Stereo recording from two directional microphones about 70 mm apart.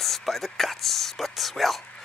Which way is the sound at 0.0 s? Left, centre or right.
Centre.